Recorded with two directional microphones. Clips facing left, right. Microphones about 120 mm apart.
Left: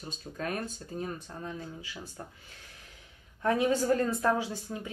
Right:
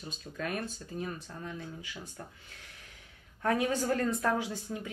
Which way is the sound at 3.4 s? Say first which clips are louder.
Left 3 dB; 30° left (ahead or behind).